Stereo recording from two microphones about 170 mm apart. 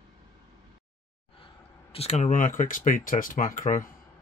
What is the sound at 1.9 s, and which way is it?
Speech, 40° left (ahead or behind).